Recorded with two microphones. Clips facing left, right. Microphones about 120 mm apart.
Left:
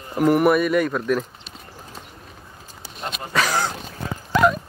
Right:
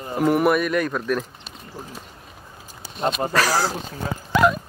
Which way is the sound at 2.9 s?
40° right (ahead or behind).